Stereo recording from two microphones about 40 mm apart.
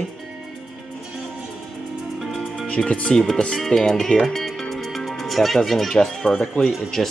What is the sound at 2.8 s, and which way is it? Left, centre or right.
Speech, left.